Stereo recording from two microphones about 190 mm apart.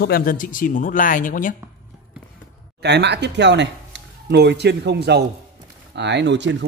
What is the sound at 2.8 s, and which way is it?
Speech, 65° right (ahead or behind).